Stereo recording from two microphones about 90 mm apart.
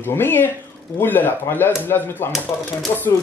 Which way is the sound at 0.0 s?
25° left (ahead or behind).